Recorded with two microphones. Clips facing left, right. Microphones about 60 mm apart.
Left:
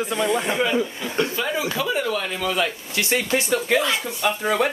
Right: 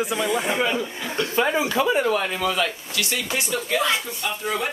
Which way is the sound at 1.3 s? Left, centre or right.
Right.